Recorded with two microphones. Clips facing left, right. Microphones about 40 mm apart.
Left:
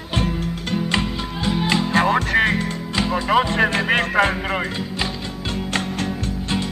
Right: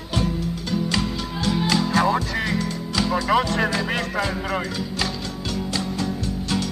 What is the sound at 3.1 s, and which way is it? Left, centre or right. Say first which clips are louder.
Music: left 2 dB; left.